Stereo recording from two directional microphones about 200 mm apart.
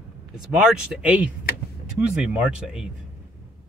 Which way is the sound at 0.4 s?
5° right (ahead or behind).